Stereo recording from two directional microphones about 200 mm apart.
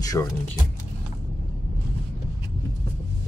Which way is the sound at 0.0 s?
15° left (ahead or behind).